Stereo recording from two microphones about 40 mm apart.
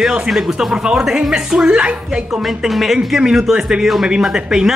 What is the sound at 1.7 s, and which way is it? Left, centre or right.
Speech, right.